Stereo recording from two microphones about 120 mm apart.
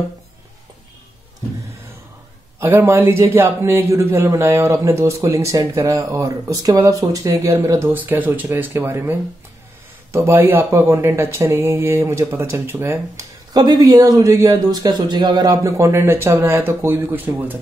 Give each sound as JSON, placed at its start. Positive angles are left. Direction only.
{"t": 2.6, "sound": "speech", "side_deg": -20}